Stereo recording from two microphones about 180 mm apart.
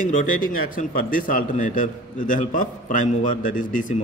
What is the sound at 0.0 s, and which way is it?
A man's voice, 50° left (ahead or behind).